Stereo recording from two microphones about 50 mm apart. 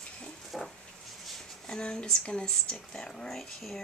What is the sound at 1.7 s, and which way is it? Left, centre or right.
Speech, centre.